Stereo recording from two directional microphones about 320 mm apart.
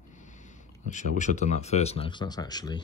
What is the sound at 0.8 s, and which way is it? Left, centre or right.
Speech, left.